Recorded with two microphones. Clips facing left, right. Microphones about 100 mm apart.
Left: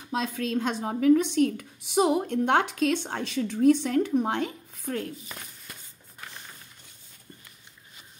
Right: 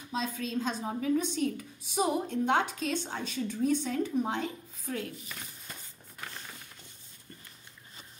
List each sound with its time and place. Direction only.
0.1 s a woman's voice: 70° left (ahead or behind)
4.9 s speech: 40° left (ahead or behind)